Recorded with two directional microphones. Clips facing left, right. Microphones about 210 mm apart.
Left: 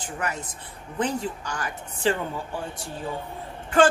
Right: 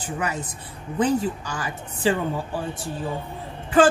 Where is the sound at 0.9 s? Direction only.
5° right (ahead or behind).